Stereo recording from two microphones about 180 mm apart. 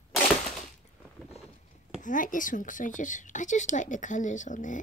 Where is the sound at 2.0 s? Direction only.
45° left (ahead or behind).